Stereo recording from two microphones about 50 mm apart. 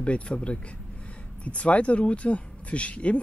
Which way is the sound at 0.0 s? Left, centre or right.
Left.